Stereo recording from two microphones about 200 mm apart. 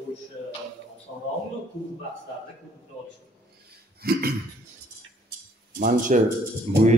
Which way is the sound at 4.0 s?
50° right (ahead or behind).